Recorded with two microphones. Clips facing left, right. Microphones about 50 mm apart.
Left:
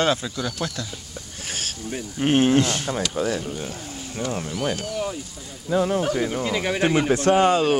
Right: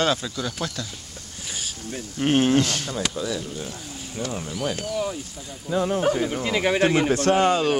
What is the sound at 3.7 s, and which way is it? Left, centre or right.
Speech, centre.